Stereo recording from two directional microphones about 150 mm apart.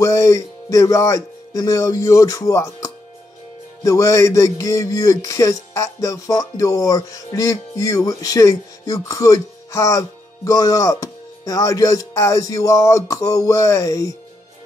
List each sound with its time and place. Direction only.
0.0 s speech: 20° left (ahead or behind)